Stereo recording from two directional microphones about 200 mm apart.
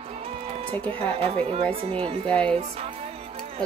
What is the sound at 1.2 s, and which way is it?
Speech, 30° right (ahead or behind).